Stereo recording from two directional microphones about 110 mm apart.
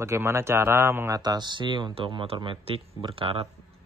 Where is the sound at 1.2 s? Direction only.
40° right (ahead or behind).